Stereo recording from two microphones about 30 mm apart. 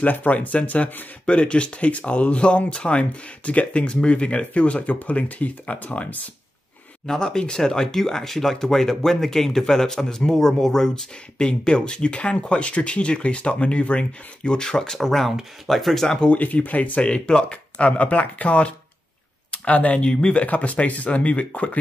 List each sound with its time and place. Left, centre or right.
0.0 s speech: left
1.2 s speech: left
7.1 s speech: left
11.3 s speech: left
15.0 s speech: centre
15.6 s speech: centre
16.2 s speech: left
16.6 s speech: left
17.0 s speech: left
19.7 s speech: left
20.0 s speech: left
20.3 s speech: left